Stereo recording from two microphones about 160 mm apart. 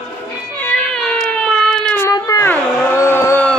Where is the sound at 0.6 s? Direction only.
10° left (ahead or behind).